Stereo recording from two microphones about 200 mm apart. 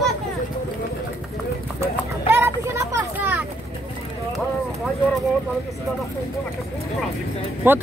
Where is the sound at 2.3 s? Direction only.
10° right (ahead or behind).